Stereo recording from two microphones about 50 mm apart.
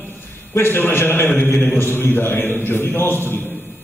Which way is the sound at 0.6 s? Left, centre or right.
Left.